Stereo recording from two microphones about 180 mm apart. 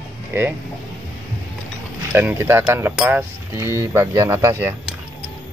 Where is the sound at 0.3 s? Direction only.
10° right (ahead or behind).